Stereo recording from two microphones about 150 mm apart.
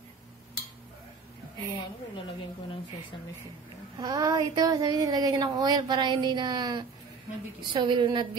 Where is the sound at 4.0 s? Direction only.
25° right (ahead or behind).